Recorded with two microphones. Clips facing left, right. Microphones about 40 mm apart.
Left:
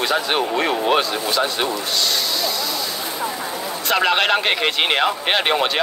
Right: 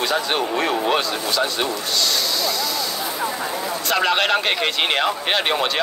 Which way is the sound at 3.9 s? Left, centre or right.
Left.